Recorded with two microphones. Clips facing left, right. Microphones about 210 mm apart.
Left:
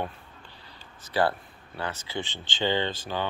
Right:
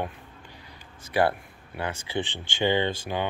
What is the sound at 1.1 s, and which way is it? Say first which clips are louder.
Speech: right 2 dB; 20° right (ahead or behind).